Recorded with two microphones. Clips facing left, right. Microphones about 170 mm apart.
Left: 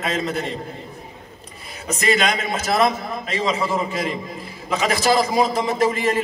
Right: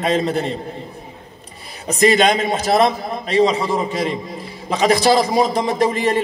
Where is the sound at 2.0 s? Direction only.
35° right (ahead or behind).